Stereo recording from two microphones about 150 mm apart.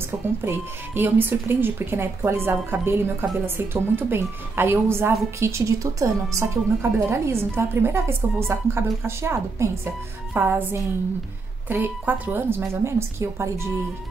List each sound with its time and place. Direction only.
0.5 s a woman's voice: 15° right (ahead or behind)